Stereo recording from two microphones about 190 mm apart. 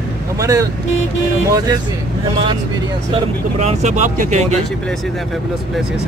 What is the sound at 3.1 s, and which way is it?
Speech, 35° right (ahead or behind).